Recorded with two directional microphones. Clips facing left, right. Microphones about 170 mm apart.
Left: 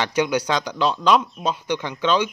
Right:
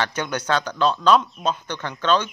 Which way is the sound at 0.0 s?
10° left (ahead or behind).